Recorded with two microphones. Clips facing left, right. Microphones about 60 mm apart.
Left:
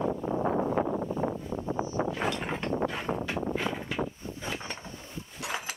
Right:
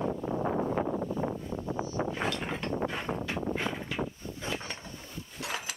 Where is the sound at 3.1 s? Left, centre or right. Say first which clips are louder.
Left 2 dB; left.